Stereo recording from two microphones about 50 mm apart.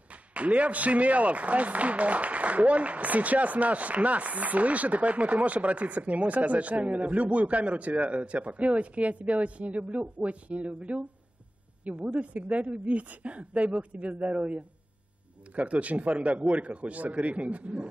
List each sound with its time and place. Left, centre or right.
0.1 s a man's voice: right